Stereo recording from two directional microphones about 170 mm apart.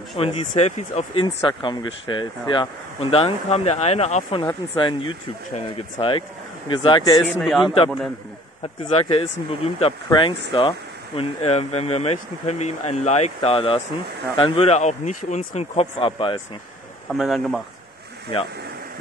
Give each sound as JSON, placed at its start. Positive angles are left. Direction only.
{"t": 0.2, "sound": "speech", "side_deg": 35}
{"t": 1.2, "sound": "a man's voice", "side_deg": 25}
{"t": 17.1, "sound": "speech", "side_deg": 0}